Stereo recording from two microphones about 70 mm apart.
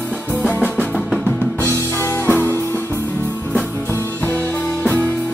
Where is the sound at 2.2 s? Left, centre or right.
Left.